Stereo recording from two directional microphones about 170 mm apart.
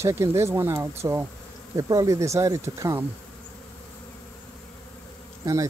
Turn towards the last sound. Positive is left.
turn(degrees=-20)  # may be behind; listen again after turning